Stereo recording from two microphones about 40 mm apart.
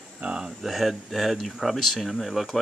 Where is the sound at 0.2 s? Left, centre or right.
Right.